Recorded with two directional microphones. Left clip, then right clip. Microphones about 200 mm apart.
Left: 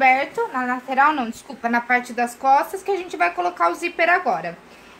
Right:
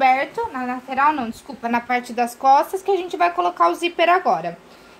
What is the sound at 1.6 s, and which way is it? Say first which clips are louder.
A woman's voice: left 2 dB; 30° right (ahead or behind).